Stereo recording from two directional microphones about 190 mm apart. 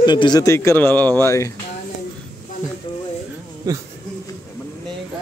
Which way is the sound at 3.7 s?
20° right (ahead or behind).